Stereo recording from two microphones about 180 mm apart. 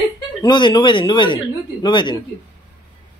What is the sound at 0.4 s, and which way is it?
Speech, 25° left (ahead or behind).